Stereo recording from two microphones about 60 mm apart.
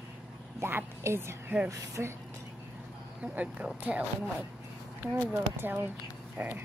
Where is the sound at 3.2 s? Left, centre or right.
Right.